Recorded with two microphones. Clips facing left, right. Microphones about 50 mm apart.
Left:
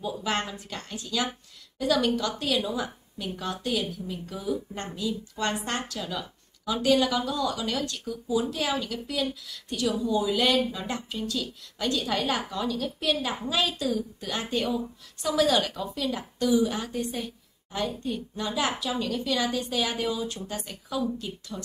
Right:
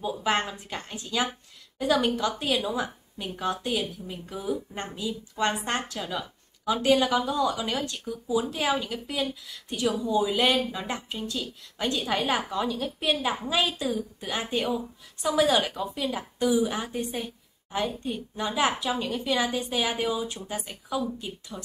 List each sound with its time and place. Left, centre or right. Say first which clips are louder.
0.0 s a woman's voice: right 3 dB; right